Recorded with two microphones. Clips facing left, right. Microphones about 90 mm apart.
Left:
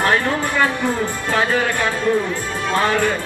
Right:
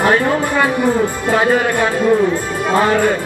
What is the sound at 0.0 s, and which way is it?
Speech, 10° right (ahead or behind).